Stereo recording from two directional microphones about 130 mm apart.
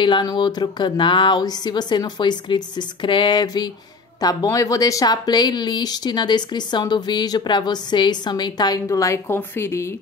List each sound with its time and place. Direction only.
0.0 s speech: 35° left (ahead or behind)